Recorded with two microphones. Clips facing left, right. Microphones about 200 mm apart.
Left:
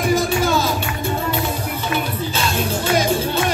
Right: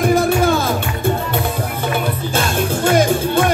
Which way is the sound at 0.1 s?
55° right (ahead or behind).